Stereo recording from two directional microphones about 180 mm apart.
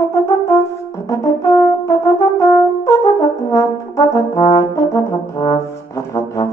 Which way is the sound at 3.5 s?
20° left (ahead or behind).